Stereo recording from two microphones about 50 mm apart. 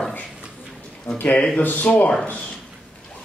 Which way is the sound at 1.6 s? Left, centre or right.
Left.